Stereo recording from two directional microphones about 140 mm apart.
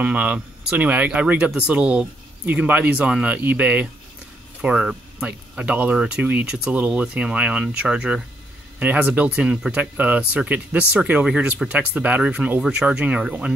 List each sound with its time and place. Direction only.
0.0 s speech: 10° right (ahead or behind)